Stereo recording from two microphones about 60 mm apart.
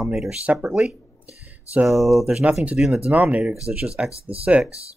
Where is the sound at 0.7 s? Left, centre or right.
Centre.